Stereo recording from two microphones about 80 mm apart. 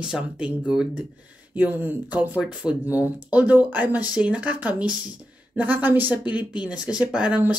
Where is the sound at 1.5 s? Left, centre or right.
Right.